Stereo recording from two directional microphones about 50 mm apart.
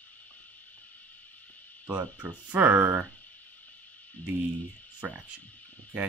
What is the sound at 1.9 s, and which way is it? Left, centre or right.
Speech, right.